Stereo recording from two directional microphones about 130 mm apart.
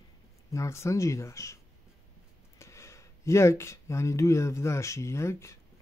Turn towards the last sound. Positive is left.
turn(degrees=20)  # may be behind; listen again after turning